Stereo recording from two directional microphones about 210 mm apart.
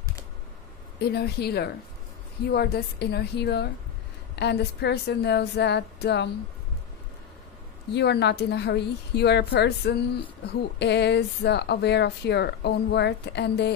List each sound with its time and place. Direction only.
0.9 s a woman's voice: 50° left (ahead or behind)
7.9 s a woman's voice: 55° left (ahead or behind)